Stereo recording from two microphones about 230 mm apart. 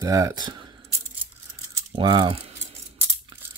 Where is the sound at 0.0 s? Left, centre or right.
Centre.